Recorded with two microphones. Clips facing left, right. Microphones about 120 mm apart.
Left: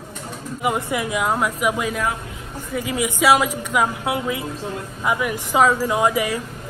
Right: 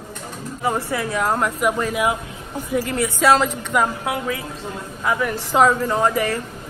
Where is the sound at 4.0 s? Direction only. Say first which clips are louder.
Left 1 dB; 20° left (ahead or behind).